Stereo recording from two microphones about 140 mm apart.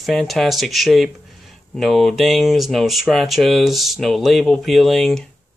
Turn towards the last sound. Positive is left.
turn(degrees=0)  # may be behind; listen again after turning